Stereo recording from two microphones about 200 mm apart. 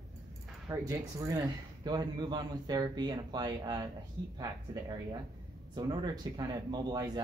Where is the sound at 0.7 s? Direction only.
15° right (ahead or behind).